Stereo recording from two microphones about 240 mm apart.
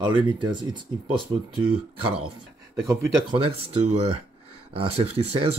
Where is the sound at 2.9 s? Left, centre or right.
Centre.